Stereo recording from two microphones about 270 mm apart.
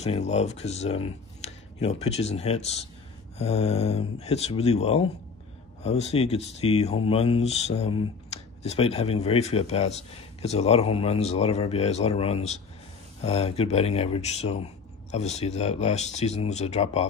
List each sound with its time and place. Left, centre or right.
0.0 s speech: left